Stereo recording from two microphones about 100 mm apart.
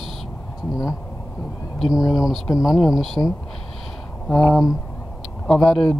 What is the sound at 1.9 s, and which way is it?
Speech, 35° left (ahead or behind).